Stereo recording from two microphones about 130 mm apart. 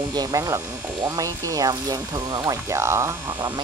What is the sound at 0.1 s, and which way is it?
Speech, 30° right (ahead or behind).